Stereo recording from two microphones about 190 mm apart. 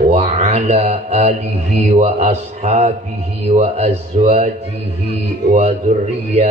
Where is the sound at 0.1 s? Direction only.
35° right (ahead or behind).